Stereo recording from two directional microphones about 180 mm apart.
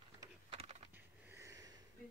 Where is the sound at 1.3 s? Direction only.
15° right (ahead or behind).